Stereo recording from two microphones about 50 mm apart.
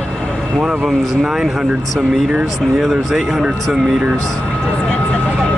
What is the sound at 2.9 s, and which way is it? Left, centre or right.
Speech, centre.